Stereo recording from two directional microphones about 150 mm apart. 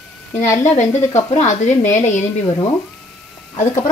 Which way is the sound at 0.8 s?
15° left (ahead or behind).